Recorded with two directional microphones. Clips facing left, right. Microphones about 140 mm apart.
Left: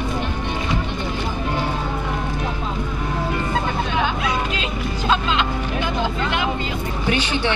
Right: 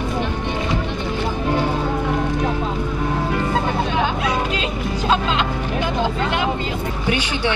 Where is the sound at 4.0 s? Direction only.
40° right (ahead or behind).